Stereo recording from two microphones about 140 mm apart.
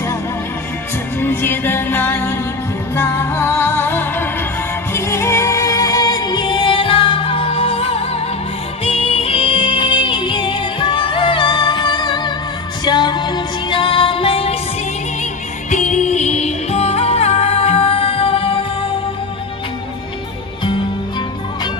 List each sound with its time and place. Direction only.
1.2 s music: 15° left (ahead or behind); by 14.6 s 45° left (ahead or behind)
15.7 s music: 60° left (ahead or behind); by 18.9 s 40° left (ahead or behind)